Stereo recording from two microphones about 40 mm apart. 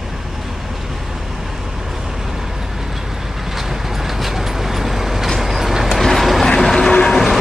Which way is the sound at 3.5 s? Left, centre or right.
Centre.